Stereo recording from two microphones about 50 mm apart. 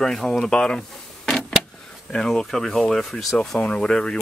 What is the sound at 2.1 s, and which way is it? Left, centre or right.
Speech, centre.